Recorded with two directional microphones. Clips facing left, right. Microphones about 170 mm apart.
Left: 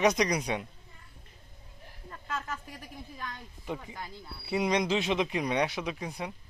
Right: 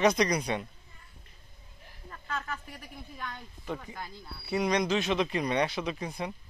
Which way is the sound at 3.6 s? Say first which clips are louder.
Even; 15° left (ahead or behind).